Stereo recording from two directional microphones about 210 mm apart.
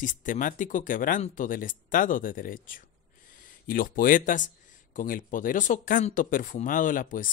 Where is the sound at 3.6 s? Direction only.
40° left (ahead or behind).